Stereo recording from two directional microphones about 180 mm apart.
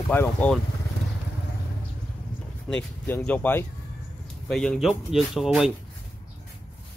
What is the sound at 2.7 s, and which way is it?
Speech, 10° left (ahead or behind).